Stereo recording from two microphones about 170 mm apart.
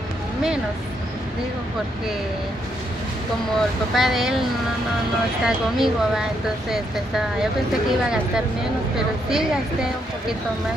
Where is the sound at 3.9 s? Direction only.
Centre (ahead or behind).